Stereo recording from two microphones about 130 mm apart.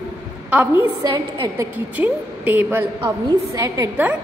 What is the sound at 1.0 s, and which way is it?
Speech, 25° right (ahead or behind).